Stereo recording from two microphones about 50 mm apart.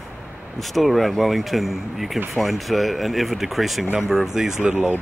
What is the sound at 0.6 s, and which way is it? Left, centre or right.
Speech, centre.